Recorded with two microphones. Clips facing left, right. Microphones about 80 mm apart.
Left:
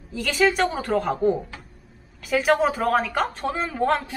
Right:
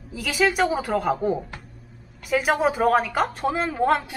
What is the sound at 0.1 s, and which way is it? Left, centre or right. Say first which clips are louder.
A woman's voice: left 1 dB; centre.